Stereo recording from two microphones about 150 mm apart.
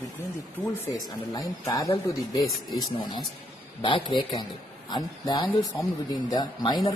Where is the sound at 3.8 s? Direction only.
35° left (ahead or behind).